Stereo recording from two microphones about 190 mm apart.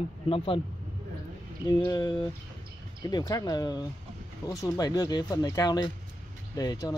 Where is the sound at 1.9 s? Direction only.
20° left (ahead or behind).